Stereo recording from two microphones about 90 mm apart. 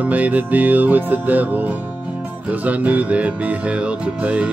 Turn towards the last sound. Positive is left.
turn(degrees=-15)  # may be behind; listen again after turning